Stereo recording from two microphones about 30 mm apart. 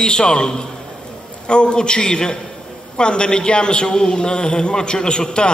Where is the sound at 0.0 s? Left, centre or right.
Left.